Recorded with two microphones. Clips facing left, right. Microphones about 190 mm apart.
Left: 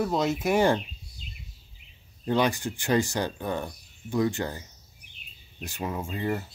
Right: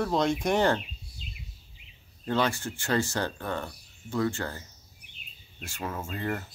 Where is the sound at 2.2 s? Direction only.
15° left (ahead or behind).